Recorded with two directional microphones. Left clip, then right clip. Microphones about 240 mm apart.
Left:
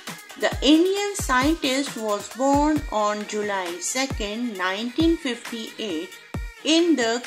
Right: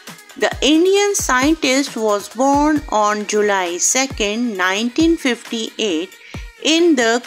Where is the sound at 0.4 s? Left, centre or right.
Right.